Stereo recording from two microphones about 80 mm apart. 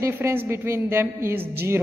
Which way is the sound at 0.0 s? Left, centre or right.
Right.